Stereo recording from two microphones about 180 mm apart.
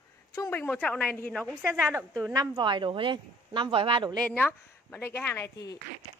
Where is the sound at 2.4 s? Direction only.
25° right (ahead or behind).